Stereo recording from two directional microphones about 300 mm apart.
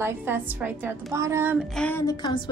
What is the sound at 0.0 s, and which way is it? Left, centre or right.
A woman's voice, centre.